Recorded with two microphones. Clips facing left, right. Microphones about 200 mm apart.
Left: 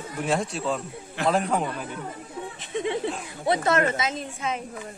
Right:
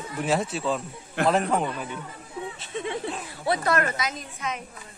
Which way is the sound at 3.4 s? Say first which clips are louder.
Left 2 dB; 20° left (ahead or behind).